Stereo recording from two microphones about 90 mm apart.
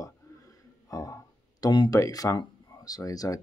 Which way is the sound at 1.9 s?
40° left (ahead or behind).